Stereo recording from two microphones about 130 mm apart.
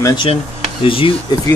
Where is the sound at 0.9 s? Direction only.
45° left (ahead or behind).